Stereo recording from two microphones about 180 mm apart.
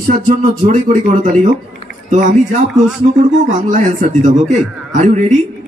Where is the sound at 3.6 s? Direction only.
45° right (ahead or behind).